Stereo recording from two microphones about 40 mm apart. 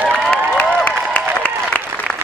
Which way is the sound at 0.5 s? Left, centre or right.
Left.